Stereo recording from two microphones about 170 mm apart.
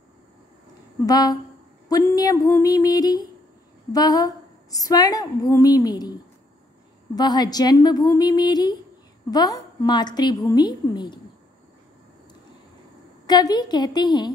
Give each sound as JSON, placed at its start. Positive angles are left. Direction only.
{"t": 1.0, "sound": "a woman's voice", "side_deg": 20}
{"t": 7.2, "sound": "a woman's voice", "side_deg": 25}
{"t": 13.3, "sound": "a woman's voice", "side_deg": 25}